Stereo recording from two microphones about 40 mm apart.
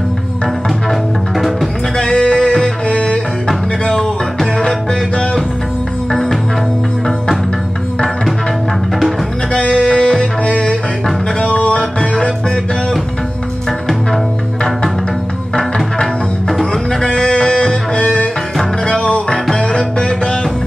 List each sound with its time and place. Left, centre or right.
1.3 s music: centre
2.0 s a sound: left
2.9 s music: left
4.6 s music: centre
9.5 s music: left
11.8 s music: centre
16.4 s music: centre
17.1 s music: left